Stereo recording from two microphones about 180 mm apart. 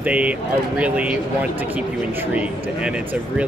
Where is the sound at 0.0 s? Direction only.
10° right (ahead or behind).